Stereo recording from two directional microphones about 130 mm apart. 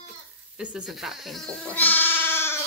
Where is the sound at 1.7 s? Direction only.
15° left (ahead or behind).